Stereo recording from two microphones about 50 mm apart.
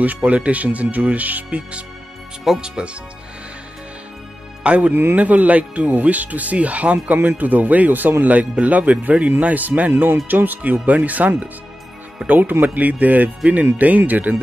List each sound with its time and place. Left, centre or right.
0.0 s speech: right
4.6 s speech: right